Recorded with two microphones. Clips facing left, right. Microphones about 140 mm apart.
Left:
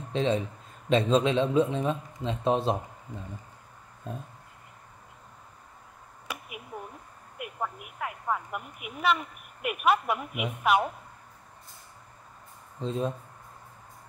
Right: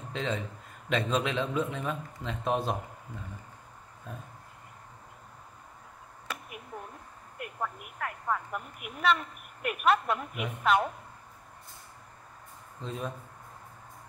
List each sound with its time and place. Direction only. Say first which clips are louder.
0.1 s a man's voice: left 7 dB; 25° left (ahead or behind)
6.2 s a sound: left 1 dB; 5° left (ahead or behind)
7.3 s speech: left 1 dB; 5° left (ahead or behind)
12.8 s a man's voice: left 7 dB; 25° left (ahead or behind)